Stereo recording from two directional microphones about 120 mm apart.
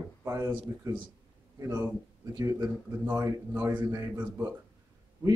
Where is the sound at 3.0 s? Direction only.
15° right (ahead or behind).